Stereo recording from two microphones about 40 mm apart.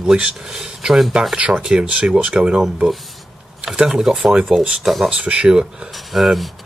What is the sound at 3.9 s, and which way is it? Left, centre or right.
Speech, centre.